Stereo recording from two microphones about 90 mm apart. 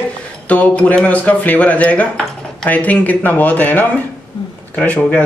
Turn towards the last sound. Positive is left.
turn(degrees=15)  # may be behind; listen again after turning